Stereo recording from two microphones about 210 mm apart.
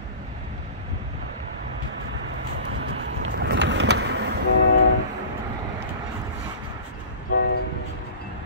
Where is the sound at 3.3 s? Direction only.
60° right (ahead or behind).